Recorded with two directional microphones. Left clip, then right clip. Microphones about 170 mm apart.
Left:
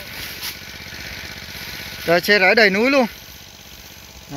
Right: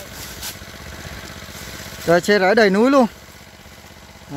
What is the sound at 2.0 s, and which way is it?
Speech, 25° right (ahead or behind).